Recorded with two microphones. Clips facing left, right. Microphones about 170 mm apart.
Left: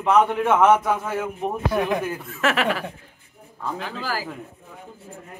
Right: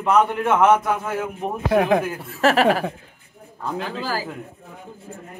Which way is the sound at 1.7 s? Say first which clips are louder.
Right 6 dB; 90° right.